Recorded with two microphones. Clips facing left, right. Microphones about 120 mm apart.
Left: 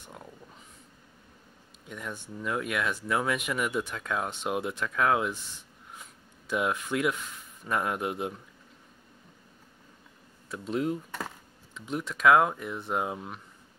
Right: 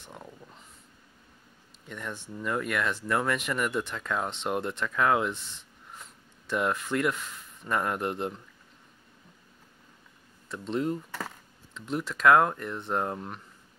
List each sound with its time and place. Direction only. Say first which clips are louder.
0.0 s speech: right 1 dB; centre (ahead or behind)
1.9 s speech: right 1 dB; 5° left (ahead or behind)
10.5 s speech: even; 5° left (ahead or behind)